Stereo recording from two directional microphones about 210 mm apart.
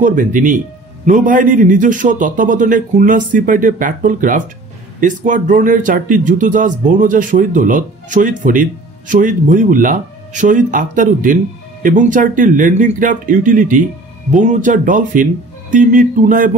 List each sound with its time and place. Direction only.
0.0 s speech: 40° right (ahead or behind)